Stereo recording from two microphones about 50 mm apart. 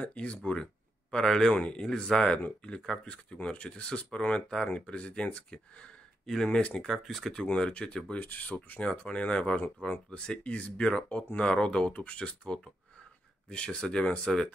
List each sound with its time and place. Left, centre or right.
0.0 s speech: left
1.1 s speech: centre
6.2 s speech: centre
6.9 s speech: centre
7.4 s speech: left
8.2 s speech: left